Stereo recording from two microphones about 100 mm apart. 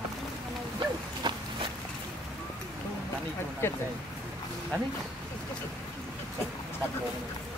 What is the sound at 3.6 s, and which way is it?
Speech, 20° left (ahead or behind).